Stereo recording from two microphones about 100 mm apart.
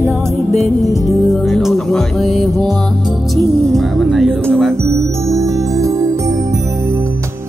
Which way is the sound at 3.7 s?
Centre (ahead or behind).